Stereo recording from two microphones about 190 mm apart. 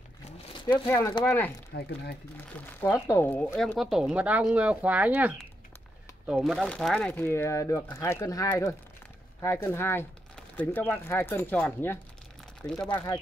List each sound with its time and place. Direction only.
0.8 s speech: 15° left (ahead or behind)
1.7 s speech: 60° left (ahead or behind)
2.8 s speech: 10° left (ahead or behind)
3.6 s speech: centre (ahead or behind)
6.3 s speech: centre (ahead or behind); by 13.2 s 20° left (ahead or behind)